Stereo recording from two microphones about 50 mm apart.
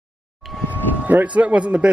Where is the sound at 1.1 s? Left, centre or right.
Right.